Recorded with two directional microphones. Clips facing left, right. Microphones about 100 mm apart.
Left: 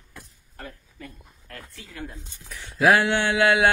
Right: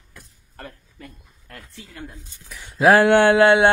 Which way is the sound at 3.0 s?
50° right (ahead or behind).